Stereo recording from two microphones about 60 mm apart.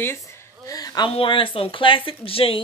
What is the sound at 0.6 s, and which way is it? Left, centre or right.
Speech, left.